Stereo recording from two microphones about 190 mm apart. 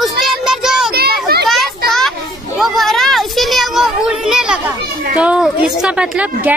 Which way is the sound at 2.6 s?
Centre (ahead or behind).